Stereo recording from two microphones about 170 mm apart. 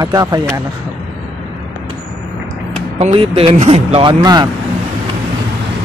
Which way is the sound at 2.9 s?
35° right (ahead or behind).